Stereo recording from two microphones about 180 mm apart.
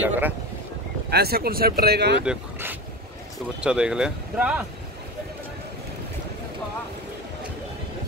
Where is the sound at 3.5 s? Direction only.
5° right (ahead or behind).